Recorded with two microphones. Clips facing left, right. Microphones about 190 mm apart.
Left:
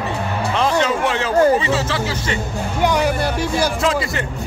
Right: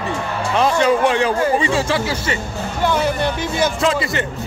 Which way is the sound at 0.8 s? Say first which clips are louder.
Right 4 dB; 15° right (ahead or behind).